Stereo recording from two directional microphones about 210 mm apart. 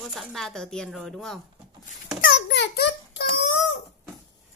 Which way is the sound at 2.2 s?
50° left (ahead or behind).